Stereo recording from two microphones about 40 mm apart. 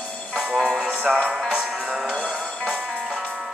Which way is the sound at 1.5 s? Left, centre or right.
Centre.